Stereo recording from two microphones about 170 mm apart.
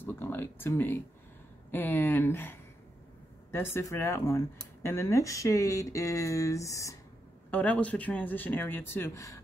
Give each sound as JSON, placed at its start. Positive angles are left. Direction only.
{"t": 0.0, "sound": "speech", "side_deg": 10}
{"t": 7.5, "sound": "speech", "side_deg": 10}